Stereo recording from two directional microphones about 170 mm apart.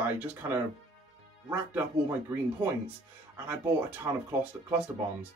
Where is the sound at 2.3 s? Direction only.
15° right (ahead or behind).